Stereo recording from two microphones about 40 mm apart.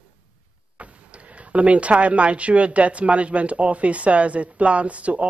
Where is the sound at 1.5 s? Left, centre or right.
Right.